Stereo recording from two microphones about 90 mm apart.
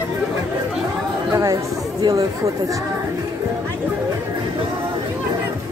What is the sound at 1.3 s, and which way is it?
Speech, 40° right (ahead or behind).